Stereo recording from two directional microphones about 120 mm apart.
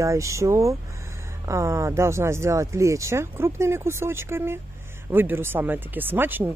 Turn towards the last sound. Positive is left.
turn(degrees=-15)  # may be behind; listen again after turning